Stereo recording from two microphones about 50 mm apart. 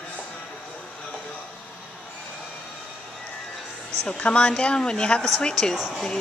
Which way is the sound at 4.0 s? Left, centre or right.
Centre.